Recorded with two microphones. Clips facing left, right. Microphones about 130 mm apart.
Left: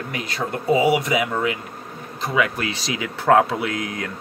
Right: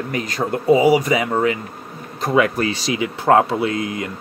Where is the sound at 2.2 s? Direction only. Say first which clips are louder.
Right 5 dB; 45° right (ahead or behind).